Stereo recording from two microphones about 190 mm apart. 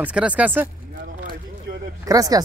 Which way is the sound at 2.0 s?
20° right (ahead or behind).